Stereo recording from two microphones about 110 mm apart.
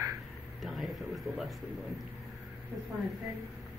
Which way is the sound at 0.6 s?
Centre (ahead or behind).